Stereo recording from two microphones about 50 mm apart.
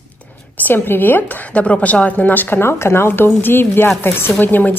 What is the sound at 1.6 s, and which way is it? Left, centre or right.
A woman's voice, left.